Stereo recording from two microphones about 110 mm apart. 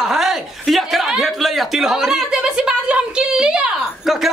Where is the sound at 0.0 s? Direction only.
Centre (ahead or behind).